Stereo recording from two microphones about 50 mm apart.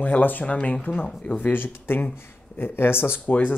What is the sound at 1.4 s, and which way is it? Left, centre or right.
Speech, left.